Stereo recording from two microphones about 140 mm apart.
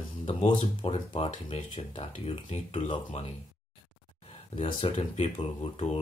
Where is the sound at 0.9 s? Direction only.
35° left (ahead or behind).